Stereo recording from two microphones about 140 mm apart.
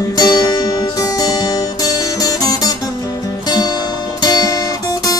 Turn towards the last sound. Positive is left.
turn(degrees=25)  # may be behind; listen again after turning